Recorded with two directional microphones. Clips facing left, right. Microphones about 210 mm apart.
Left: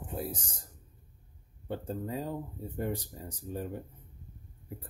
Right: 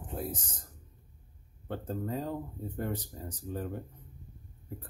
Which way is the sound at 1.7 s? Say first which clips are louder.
Even; 10° left (ahead or behind).